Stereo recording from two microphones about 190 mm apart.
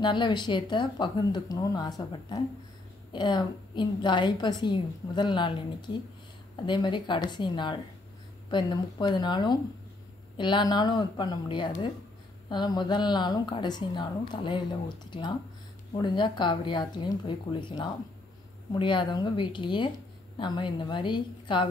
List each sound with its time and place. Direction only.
0.0 s a woman's voice: 25° left (ahead or behind)